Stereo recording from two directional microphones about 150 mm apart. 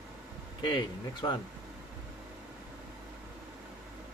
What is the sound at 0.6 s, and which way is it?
Speech, 30° left (ahead or behind).